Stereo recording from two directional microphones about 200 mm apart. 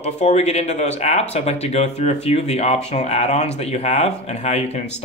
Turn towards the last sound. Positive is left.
turn(degrees=35)  # may be behind; listen again after turning